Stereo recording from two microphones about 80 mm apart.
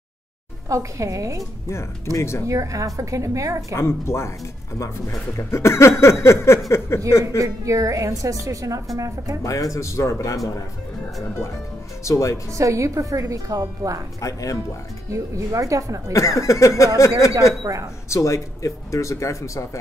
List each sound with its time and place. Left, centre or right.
0.7 s a woman's voice: right
2.1 s speech: left
2.4 s a woman's voice: right
3.7 s speech: left
7.3 s a woman's voice: right
9.4 s speech: left
12.0 s speech: left
12.5 s a woman's voice: right
14.2 s speech: left
15.1 s a woman's voice: right
16.1 s speech: left
17.6 s a woman's voice: right
18.1 s speech: left